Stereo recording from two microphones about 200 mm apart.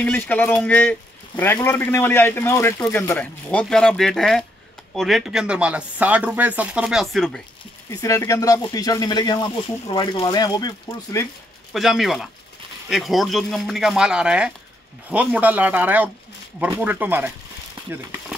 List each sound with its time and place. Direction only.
0.0 s a man's voice: 10° left (ahead or behind)
7.9 s speech: 15° left (ahead or behind)
11.7 s speech: centre (ahead or behind)
17.8 s a sound: 25° right (ahead or behind)